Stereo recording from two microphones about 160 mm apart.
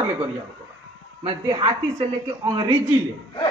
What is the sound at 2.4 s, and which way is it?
Speech, 25° right (ahead or behind).